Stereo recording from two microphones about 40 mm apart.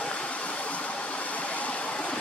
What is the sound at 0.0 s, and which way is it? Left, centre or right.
Vehicle, left.